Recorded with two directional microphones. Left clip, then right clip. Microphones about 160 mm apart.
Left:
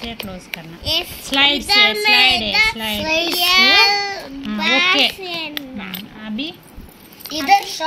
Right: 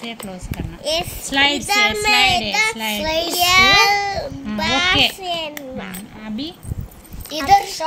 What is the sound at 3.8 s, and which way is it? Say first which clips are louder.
Baby cry: even; 45° right (ahead or behind).